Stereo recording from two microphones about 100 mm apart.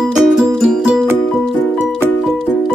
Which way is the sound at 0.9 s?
15° right (ahead or behind).